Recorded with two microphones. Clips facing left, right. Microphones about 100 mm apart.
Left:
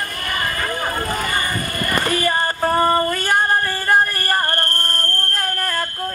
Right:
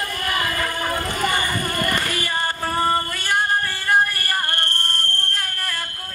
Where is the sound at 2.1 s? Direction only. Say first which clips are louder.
Left 5 dB; 40° left (ahead or behind).